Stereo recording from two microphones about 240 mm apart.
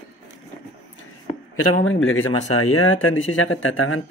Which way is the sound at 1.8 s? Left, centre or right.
Left.